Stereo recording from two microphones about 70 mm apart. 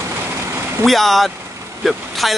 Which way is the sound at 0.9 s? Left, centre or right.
Centre.